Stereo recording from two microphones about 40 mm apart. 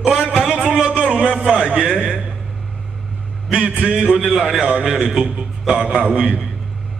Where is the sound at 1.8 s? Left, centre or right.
Left.